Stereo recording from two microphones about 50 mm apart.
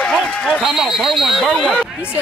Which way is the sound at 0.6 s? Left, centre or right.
Centre.